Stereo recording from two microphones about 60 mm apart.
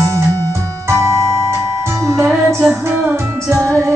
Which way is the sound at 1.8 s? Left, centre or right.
Right.